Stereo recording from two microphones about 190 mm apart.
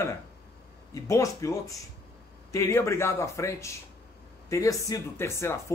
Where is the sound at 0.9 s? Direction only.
15° left (ahead or behind).